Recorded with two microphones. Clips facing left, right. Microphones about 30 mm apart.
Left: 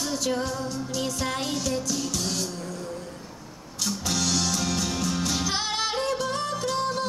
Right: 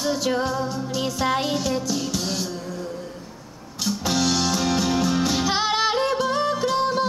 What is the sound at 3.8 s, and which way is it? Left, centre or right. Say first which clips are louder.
Music: right 5 dB; centre.